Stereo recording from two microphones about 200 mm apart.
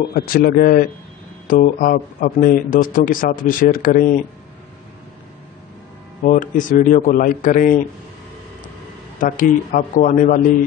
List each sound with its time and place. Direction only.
0.1 s speech: 50° left (ahead or behind)
6.2 s a man's voice: 35° left (ahead or behind)
9.2 s a man's voice: 40° left (ahead or behind)